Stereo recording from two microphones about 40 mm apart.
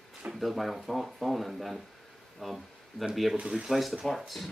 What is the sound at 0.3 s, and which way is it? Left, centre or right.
Speech, centre.